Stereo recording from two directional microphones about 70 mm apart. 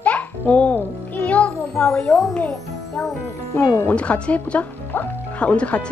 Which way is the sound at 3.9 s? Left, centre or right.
Centre.